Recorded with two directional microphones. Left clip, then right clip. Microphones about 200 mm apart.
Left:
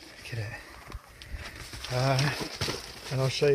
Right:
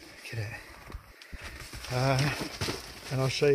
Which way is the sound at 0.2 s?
15° right (ahead or behind).